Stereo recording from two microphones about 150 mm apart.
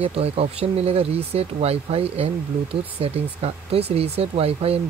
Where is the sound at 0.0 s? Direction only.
45° right (ahead or behind).